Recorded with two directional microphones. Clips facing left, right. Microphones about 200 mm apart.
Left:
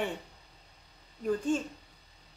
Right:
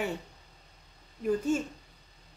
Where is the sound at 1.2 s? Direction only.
5° right (ahead or behind).